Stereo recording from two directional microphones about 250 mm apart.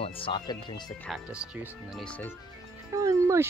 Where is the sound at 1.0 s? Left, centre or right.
Centre.